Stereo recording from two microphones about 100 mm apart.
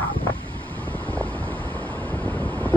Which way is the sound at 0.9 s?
15° left (ahead or behind).